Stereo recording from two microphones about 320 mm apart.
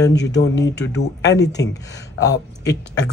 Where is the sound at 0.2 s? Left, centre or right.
Left.